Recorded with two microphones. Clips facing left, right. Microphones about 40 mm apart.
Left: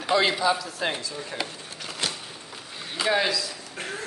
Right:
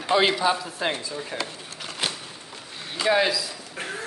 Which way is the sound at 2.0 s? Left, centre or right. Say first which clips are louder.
Right 2 dB; centre.